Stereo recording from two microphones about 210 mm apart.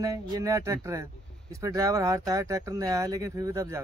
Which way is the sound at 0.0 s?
15° right (ahead or behind).